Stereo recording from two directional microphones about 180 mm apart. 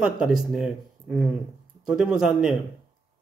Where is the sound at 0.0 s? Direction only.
5° right (ahead or behind).